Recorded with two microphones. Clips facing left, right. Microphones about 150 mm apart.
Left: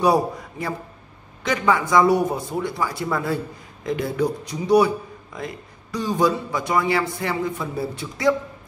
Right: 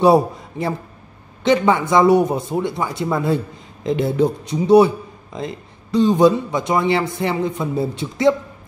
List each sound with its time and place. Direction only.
0.0 s a man's voice: 25° right (ahead or behind)